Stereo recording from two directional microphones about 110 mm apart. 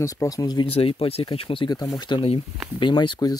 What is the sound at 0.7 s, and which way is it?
Speech, 60° left (ahead or behind).